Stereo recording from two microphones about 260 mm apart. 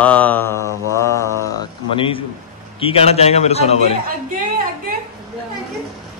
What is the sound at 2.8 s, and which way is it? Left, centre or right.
A man's voice, left.